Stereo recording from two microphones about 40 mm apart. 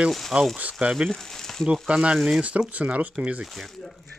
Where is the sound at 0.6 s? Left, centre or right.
Right.